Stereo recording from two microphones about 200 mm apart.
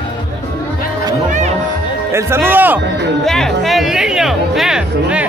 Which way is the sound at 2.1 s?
10° right (ahead or behind).